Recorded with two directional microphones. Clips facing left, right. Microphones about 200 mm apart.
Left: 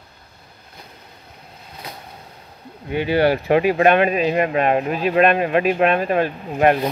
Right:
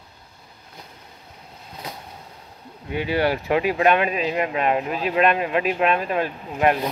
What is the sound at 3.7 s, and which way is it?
Speech, 55° left (ahead or behind).